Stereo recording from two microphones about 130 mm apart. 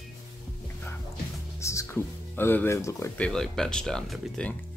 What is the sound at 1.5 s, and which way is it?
Speech, 20° left (ahead or behind).